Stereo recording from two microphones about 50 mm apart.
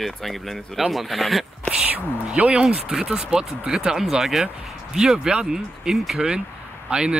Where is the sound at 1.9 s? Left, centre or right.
Right; by 6.2 s centre.